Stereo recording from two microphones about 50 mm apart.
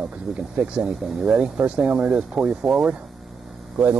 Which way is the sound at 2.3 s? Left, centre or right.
Centre.